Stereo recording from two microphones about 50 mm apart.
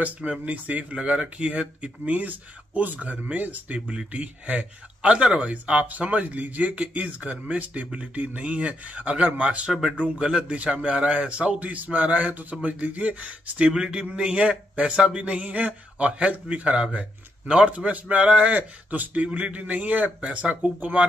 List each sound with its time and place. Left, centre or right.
0.0 s speech: right
9.7 s speech: centre
9.9 s speech: right
13.7 s speech: centre